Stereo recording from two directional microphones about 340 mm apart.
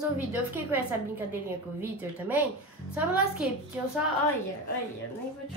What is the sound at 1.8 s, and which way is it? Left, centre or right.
Speech, centre.